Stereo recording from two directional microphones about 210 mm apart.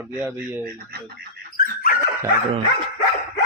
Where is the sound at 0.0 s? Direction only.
10° right (ahead or behind).